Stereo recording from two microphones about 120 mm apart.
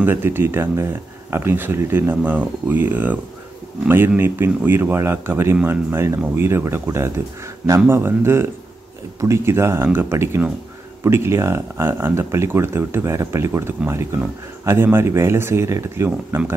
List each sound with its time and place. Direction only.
0.0 s speech: 20° right (ahead or behind)